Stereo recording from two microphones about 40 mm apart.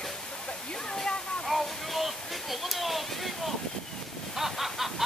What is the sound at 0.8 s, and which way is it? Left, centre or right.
Waterfall, centre.